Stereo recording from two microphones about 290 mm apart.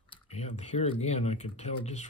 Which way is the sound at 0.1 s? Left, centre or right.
Left.